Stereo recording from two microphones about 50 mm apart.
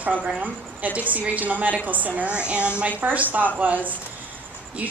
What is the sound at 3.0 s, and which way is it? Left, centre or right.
A woman's voice, right.